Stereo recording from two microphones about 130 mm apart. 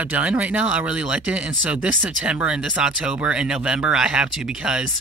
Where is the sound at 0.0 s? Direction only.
10° right (ahead or behind).